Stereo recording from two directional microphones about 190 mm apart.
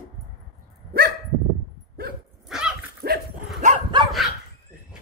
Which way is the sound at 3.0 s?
55° right (ahead or behind).